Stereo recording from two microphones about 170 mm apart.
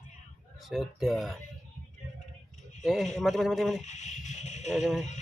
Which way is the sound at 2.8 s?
Centre (ahead or behind).